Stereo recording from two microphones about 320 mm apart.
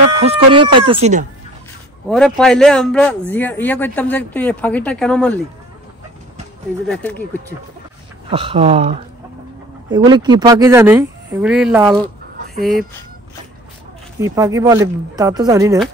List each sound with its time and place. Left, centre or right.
0.2 s speech: centre
2.0 s a man's voice: centre
6.9 s a man's voice: centre
8.3 s speech: centre
14.2 s speech: centre